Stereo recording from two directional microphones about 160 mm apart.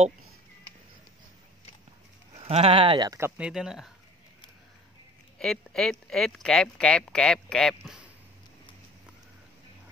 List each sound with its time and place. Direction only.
2.3 s speech: 40° right (ahead or behind)
3.1 s speech: 15° right (ahead or behind)
5.4 s speech: 5° left (ahead or behind)